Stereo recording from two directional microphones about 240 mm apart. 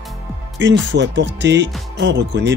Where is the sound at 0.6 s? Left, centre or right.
Right.